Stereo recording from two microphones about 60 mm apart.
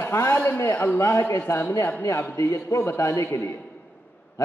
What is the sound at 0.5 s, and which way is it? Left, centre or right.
A man's voice, left.